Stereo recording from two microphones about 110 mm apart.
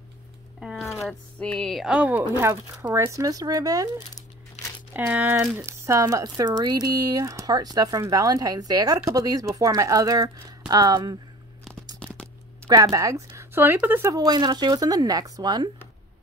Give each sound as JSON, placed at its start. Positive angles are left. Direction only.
{"t": 0.6, "sound": "a sound", "side_deg": -5}
{"t": 1.4, "sound": "music", "side_deg": 5}
{"t": 1.9, "sound": "speech", "side_deg": -10}
{"t": 2.4, "sound": "speech", "side_deg": -25}
{"t": 4.9, "sound": "speech", "side_deg": -15}
{"t": 5.7, "sound": "speech", "side_deg": -25}
{"t": 12.0, "sound": "a sound", "side_deg": 10}
{"t": 12.6, "sound": "speech", "side_deg": -35}
{"t": 14.1, "sound": "speech", "side_deg": -40}